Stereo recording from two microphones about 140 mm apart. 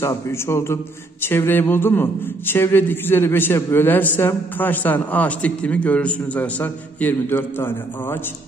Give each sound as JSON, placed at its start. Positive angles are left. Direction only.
{"t": 0.0, "sound": "a man's voice", "side_deg": 20}